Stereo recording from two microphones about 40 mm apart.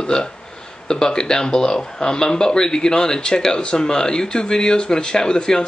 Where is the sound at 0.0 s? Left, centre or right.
Centre.